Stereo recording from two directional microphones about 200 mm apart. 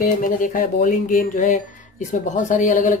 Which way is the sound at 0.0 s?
40° left (ahead or behind).